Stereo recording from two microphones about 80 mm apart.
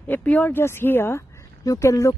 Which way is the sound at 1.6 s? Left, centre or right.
Left.